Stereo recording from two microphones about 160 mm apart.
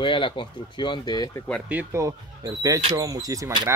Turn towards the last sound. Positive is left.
turn(degrees=-25)  # may be behind; listen again after turning